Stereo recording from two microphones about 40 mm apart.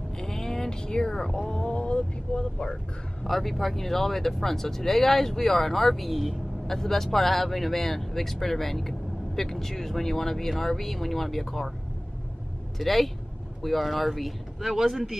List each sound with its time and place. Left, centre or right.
0.2 s a sound: centre
3.3 s speech: centre
6.7 s speech: centre
12.7 s speech: centre